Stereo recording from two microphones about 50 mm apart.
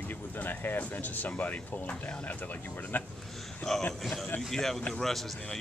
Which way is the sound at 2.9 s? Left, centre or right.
Left.